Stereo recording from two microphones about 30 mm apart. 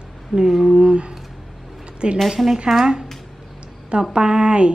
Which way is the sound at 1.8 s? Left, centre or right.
Right.